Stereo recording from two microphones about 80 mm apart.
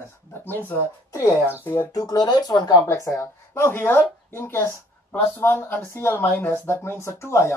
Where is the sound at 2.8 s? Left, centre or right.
Left.